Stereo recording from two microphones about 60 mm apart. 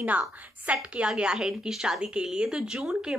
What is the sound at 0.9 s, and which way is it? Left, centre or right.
A woman's voice, centre.